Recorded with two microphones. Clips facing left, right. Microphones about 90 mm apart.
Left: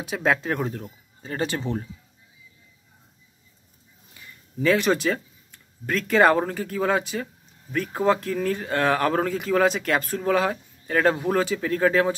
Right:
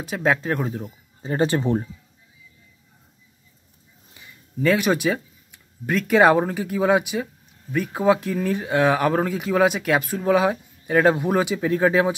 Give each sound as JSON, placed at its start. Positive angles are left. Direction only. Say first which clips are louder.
{"t": 0.0, "sound": "speech", "louder": "right 1 dB", "side_deg": 0}
{"t": 1.2, "sound": "speech", "louder": "right 6 dB", "side_deg": -30}
{"t": 4.6, "sound": "speech", "louder": "right 1 dB", "side_deg": -5}